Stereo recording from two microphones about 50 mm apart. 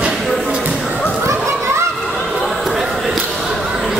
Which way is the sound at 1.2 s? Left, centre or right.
Right.